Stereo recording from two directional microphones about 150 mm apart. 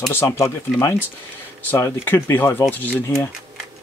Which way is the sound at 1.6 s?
15° left (ahead or behind).